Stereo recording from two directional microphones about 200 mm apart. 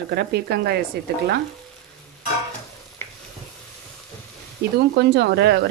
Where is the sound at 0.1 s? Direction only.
55° right (ahead or behind).